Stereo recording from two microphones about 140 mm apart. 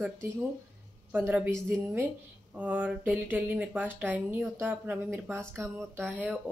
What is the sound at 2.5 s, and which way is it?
Speech, 10° right (ahead or behind).